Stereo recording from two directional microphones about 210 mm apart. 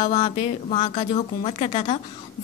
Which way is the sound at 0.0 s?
25° left (ahead or behind).